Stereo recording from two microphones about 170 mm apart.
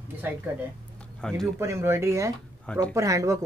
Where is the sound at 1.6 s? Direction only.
15° right (ahead or behind).